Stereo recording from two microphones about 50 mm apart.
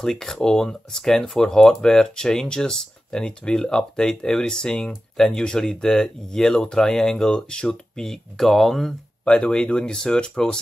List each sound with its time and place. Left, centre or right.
0.0 s speech: centre
9.2 s speech: left